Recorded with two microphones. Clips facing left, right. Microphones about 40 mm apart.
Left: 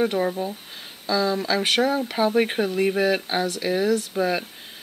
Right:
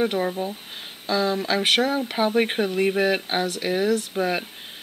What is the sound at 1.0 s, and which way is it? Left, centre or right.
Speech, right.